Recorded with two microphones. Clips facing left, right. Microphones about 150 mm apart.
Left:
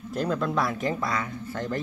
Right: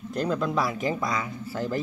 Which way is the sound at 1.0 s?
20° right (ahead or behind).